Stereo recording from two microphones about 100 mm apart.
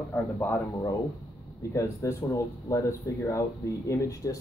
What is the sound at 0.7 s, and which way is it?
Speech, 35° left (ahead or behind).